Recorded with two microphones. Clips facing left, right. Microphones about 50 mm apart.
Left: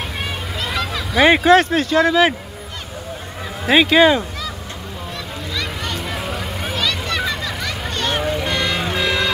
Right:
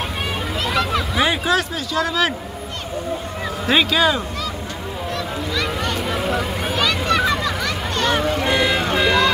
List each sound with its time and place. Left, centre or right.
1.1 s speech: left
3.6 s speech: centre
3.9 s speech: left
5.5 s vehicle: centre
8.5 s car alarm: centre